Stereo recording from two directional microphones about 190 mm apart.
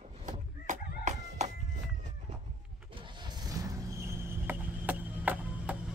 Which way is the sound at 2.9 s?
25° right (ahead or behind).